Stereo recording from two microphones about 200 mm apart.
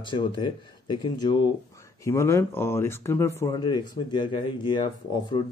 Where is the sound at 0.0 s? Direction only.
25° left (ahead or behind).